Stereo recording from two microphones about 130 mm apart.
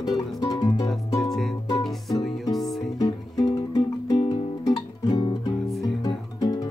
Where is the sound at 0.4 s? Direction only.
30° left (ahead or behind).